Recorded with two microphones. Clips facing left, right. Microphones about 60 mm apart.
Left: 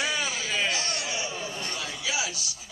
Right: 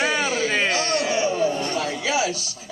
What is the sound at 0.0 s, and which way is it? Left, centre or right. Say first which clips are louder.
Chatter: right 8 dB; right.